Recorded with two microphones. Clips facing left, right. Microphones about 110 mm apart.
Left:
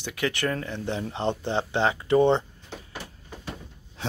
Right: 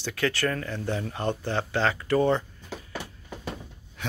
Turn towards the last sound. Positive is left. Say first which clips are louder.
# left 2 dB
turn(degrees=30)  # may be behind; listen again after turning